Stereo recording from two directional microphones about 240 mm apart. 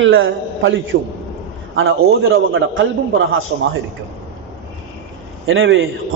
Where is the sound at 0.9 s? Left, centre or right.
Right.